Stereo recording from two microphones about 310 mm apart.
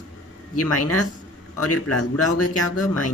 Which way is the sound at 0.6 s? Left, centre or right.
Left.